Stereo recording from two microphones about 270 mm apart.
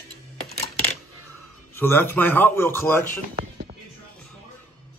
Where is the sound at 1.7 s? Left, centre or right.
Centre.